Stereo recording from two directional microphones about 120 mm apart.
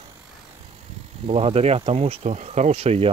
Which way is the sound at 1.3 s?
55° right (ahead or behind).